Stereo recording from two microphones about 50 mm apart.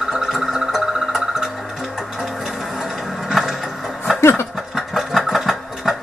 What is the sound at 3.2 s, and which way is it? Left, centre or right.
Printer, centre.